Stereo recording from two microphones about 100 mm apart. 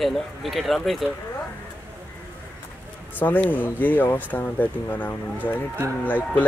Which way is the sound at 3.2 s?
15° left (ahead or behind).